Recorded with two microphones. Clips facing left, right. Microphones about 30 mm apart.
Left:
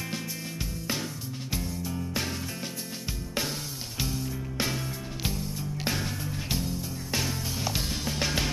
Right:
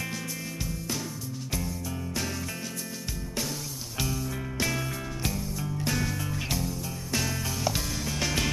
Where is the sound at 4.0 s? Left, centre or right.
Centre.